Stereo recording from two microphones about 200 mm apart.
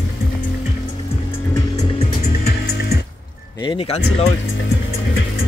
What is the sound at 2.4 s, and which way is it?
Music, 50° left (ahead or behind).